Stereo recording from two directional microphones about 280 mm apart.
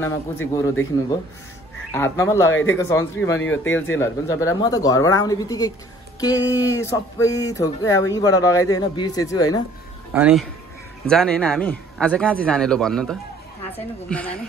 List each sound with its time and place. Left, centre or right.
0.0 s speech: centre
1.9 s speech: centre
10.1 s a man's voice: centre